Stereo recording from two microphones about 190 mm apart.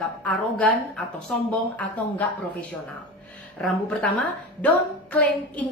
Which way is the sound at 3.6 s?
5° left (ahead or behind).